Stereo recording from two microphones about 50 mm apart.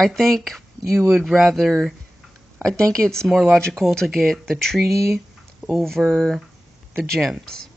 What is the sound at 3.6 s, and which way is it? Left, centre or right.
Speech, centre.